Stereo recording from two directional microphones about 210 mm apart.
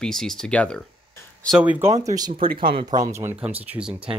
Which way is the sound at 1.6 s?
10° right (ahead or behind).